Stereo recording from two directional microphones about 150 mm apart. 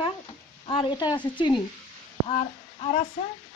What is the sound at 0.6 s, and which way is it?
Speech, 35° left (ahead or behind).